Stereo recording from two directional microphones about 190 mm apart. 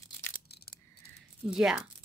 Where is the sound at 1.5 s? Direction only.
5° right (ahead or behind).